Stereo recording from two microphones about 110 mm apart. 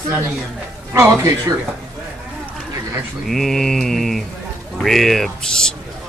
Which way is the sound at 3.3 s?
Centre (ahead or behind).